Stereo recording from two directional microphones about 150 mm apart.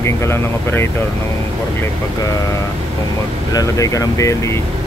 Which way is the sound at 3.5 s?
25° left (ahead or behind).